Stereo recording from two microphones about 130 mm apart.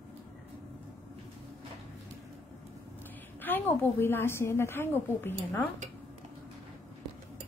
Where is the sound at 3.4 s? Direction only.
15° left (ahead or behind).